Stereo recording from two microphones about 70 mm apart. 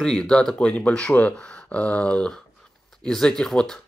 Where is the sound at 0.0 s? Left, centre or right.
Centre.